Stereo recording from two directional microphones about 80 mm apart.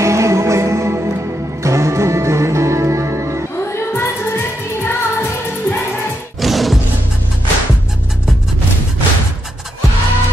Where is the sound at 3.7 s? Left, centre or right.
Left.